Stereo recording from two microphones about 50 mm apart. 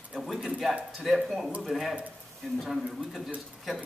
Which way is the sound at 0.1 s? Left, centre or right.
Centre.